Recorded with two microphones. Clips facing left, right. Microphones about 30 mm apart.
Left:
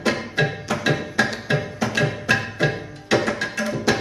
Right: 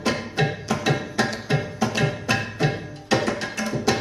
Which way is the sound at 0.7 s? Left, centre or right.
Centre.